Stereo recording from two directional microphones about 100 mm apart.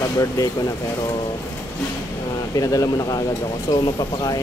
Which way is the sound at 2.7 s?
40° left (ahead or behind).